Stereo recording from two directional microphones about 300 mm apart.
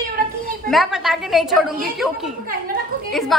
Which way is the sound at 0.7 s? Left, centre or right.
Centre.